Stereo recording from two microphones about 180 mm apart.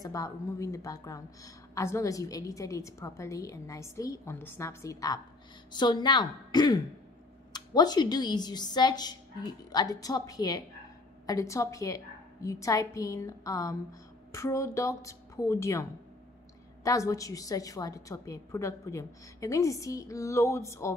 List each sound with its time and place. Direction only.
0.0 s a woman's voice: 20° left (ahead or behind)